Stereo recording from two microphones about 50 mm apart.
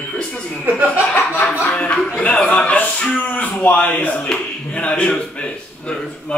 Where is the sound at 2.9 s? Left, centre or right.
Centre.